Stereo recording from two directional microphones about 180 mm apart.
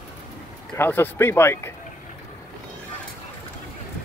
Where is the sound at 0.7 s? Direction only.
10° left (ahead or behind).